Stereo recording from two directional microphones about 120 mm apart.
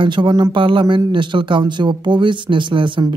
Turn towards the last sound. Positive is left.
turn(degrees=-45)  # may be behind; listen again after turning